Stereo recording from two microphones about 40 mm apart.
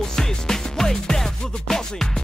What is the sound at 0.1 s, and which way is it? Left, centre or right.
Music, centre.